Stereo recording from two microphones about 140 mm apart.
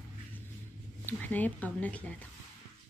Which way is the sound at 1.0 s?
15° left (ahead or behind).